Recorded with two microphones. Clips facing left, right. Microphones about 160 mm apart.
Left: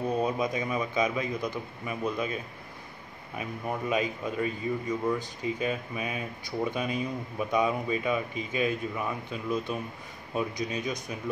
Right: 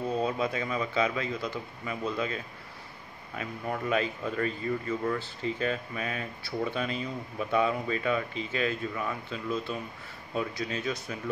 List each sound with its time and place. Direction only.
0.2 s speech: 15° left (ahead or behind)